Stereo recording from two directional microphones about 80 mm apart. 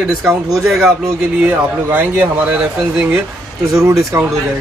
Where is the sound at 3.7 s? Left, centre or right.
Right.